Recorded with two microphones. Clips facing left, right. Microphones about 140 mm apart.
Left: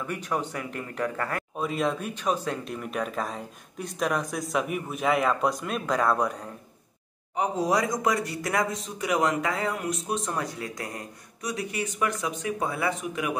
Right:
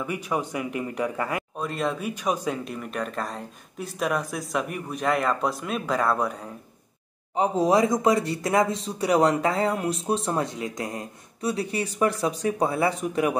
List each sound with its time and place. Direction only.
0.0 s speech: 10° right (ahead or behind)
1.6 s speech: centre (ahead or behind)
7.3 s speech: 25° right (ahead or behind)